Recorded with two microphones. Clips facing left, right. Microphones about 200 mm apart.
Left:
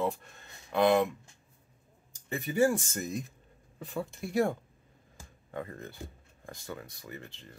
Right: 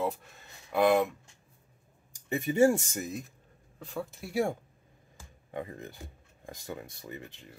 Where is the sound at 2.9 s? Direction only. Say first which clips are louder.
Left 1 dB; 5° right (ahead or behind).